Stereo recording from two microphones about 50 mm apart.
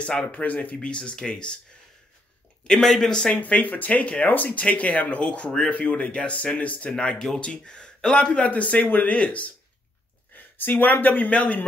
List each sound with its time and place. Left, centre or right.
0.0 s speech: left
0.3 s speech: left
0.7 s speech: centre
2.6 s speech: centre
3.3 s speech: left
11.2 s speech: left